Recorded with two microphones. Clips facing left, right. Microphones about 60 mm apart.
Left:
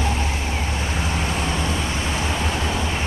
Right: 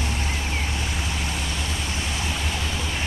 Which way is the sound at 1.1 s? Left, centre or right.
Left.